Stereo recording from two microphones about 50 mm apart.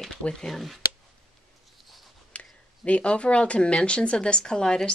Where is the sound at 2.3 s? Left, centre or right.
Left.